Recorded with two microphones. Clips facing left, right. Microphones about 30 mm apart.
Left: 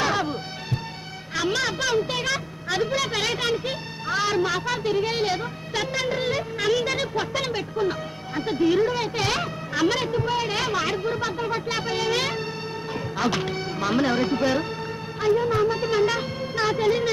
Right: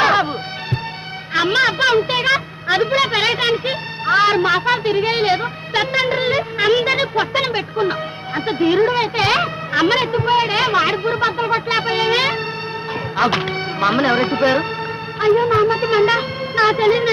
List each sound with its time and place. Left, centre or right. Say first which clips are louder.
0.0 s bagpipes: right 9 dB; right
1.3 s a woman's voice: right 9 dB; right